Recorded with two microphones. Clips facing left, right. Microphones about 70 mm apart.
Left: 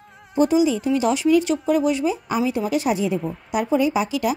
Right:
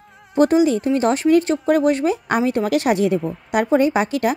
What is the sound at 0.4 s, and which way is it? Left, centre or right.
Speech, right.